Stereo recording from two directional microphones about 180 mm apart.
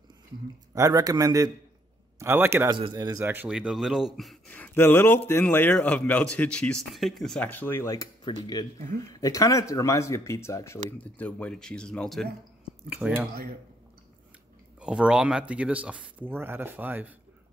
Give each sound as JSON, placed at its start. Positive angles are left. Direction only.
{"t": 0.7, "sound": "speech", "side_deg": -20}
{"t": 12.9, "sound": "speech", "side_deg": -10}
{"t": 14.8, "sound": "speech", "side_deg": -5}